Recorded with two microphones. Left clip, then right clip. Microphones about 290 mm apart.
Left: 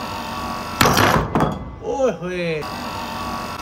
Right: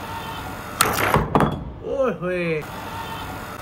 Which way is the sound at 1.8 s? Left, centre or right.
Centre.